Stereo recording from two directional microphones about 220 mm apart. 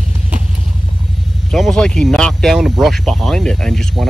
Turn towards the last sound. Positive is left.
turn(degrees=0)  # may be behind; listen again after turning